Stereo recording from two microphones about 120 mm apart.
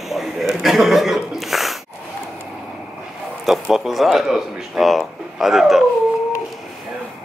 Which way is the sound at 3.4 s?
Centre (ahead or behind).